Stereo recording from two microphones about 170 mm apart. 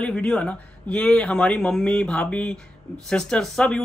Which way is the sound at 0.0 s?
5° left (ahead or behind).